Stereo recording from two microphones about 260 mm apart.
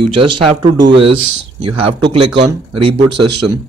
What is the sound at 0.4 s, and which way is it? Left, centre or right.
Speech, centre.